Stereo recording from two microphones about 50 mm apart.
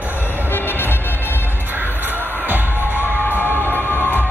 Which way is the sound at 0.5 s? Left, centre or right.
Left.